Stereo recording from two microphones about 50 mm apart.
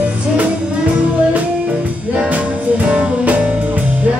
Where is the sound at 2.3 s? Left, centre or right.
Right.